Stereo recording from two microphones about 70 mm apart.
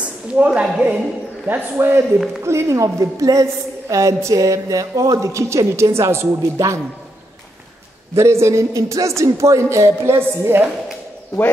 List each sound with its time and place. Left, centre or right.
0.4 s a woman's voice: centre
1.5 s a man's voice: right
2.4 s a woman's voice: right
8.1 s a woman's voice: right